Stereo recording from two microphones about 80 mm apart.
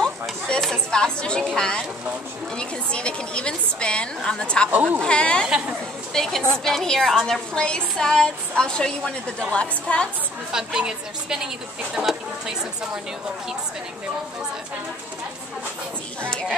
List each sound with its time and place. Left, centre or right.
0.0 s chatter: centre
1.5 s a woman's voice: centre
4.6 s speech: right
5.0 s a woman's voice: centre
10.5 s a woman's voice: centre
16.2 s a woman's voice: centre